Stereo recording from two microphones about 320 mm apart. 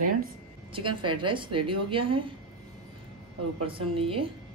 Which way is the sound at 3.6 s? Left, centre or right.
Centre.